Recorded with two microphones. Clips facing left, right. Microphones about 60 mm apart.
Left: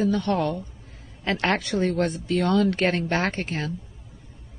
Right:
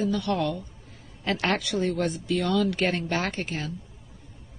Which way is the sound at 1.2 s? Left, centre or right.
Left.